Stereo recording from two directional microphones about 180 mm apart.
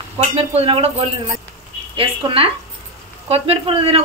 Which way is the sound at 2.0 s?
30° right (ahead or behind).